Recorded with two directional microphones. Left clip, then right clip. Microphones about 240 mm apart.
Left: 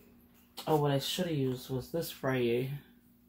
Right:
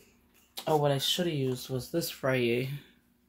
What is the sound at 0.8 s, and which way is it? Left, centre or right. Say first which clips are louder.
Speech: right 4 dB; right.